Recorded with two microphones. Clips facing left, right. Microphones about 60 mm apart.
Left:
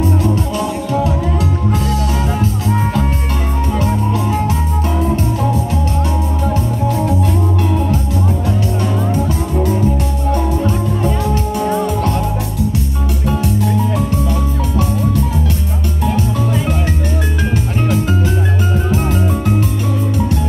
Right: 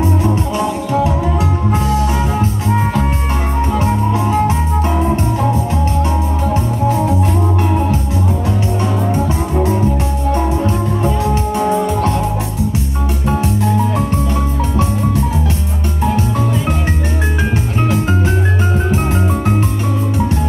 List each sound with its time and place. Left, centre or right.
0.6 s music: right
3.5 s music: right
10.3 s music: right